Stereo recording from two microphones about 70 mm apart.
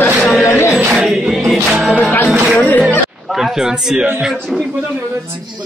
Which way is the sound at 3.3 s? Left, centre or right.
Centre.